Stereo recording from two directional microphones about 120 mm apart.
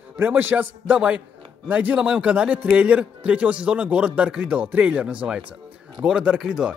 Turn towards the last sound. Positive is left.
turn(degrees=-5)  # may be behind; listen again after turning